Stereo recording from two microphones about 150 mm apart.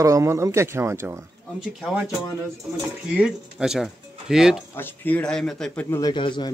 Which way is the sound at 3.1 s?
5° right (ahead or behind).